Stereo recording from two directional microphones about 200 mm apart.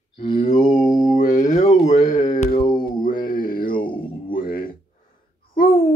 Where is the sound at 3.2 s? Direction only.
45° left (ahead or behind).